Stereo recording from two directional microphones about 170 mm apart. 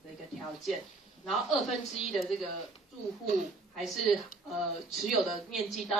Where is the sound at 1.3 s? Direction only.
Centre (ahead or behind).